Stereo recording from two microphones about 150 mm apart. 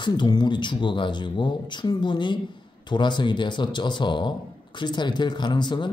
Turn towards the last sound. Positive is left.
turn(degrees=30)  # may be behind; listen again after turning